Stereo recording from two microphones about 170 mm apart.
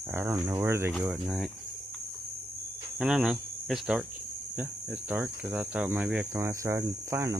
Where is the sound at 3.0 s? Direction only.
5° right (ahead or behind).